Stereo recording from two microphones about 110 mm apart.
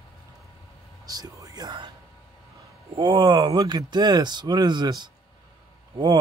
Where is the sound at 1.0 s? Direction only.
35° right (ahead or behind).